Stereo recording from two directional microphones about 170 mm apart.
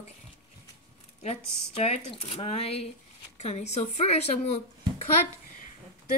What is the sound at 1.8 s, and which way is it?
Speech, 40° left (ahead or behind).